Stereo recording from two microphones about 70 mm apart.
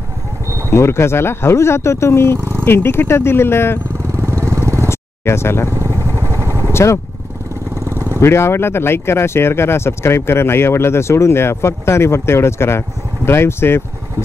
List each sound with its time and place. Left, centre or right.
0.7 s speech: left
2.3 s a sound: right
2.6 s speech: left
4.1 s vehicle: right
4.8 s vehicle: left
5.7 s vehicle: right
6.7 s vehicle: left
7.9 s vehicle: right
8.2 s speech: left